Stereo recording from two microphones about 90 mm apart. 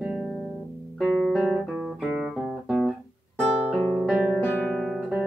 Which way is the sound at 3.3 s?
10° left (ahead or behind).